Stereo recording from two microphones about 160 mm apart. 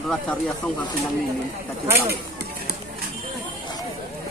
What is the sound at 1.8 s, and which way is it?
Speech, 15° right (ahead or behind).